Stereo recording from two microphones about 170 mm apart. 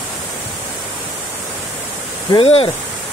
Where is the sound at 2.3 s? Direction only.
35° left (ahead or behind).